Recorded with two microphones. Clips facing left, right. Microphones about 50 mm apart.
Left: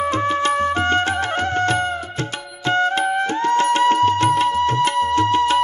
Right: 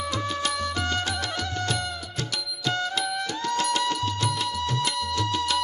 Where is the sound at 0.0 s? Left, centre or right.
Left.